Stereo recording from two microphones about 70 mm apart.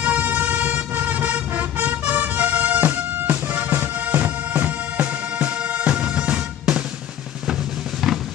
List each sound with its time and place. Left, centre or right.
0.0 s vehicle: right